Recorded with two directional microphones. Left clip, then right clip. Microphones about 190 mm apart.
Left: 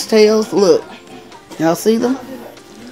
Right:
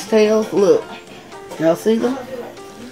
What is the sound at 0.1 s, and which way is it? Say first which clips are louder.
Speech: left 3 dB; 55° left (ahead or behind).